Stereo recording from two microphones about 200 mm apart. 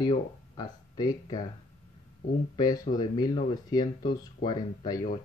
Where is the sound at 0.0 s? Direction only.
20° left (ahead or behind).